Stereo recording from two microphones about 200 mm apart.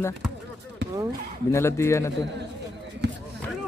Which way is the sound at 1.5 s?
15° left (ahead or behind).